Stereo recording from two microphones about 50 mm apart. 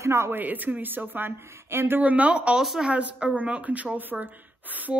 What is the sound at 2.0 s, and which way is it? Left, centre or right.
A woman's voice, right.